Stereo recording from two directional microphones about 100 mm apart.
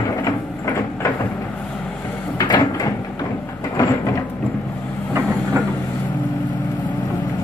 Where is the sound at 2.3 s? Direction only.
40° left (ahead or behind).